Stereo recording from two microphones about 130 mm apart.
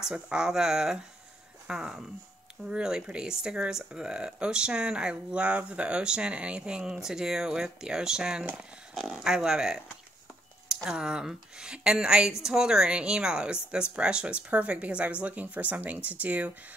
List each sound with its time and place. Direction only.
0.0 s speech: 5° right (ahead or behind)